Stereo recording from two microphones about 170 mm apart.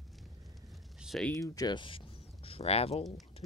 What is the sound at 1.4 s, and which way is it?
Speech, 20° left (ahead or behind).